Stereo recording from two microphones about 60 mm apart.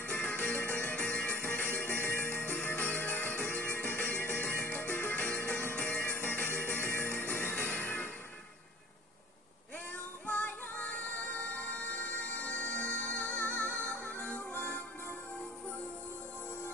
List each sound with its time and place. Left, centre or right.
0.0 s music: left
10.2 s music: left